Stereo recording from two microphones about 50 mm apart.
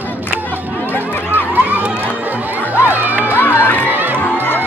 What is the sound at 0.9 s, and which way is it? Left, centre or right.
Run, right.